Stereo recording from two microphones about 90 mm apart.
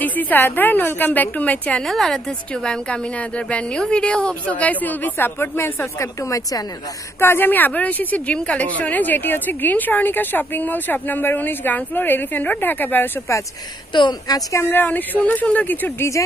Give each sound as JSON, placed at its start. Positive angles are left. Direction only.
{"t": 0.0, "sound": "a woman's voice", "side_deg": 20}
{"t": 1.9, "sound": "a woman's voice", "side_deg": 5}
{"t": 13.9, "sound": "a woman's voice", "side_deg": 50}
{"t": 14.5, "sound": "a woman's voice", "side_deg": 30}